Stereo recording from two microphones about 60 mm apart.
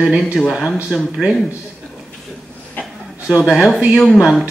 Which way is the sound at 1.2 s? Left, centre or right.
Centre.